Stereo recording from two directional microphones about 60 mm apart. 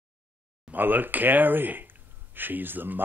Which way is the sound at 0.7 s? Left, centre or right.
Right.